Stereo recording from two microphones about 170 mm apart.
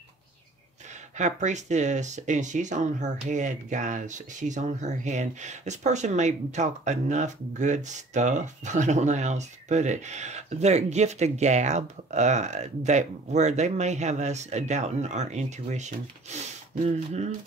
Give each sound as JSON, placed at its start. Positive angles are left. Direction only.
{"t": 1.1, "sound": "speech", "side_deg": -45}